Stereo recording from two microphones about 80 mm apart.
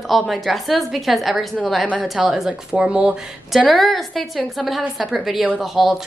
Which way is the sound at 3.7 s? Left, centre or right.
Centre.